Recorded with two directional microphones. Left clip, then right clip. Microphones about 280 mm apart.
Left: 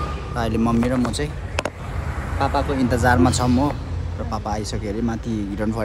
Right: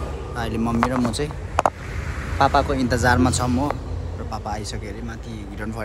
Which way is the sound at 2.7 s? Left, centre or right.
Centre.